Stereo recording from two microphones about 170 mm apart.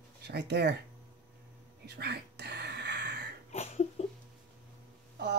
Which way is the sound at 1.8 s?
75° right (ahead or behind).